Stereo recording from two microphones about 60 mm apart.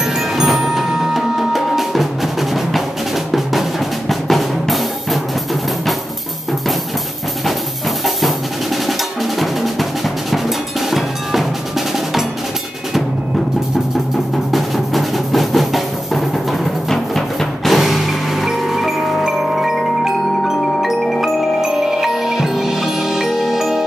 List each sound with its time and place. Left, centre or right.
0.4 s music: centre
4.1 s drum: centre
9.4 s drum: centre
10.9 s cowbell: centre
14.5 s music: centre
21.0 s music: centre
21.4 s music: centre